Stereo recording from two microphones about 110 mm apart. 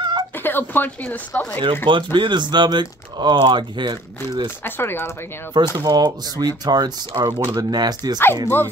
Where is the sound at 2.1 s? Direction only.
45° right (ahead or behind).